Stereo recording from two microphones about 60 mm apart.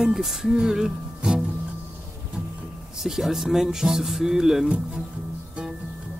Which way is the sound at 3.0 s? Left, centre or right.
Centre.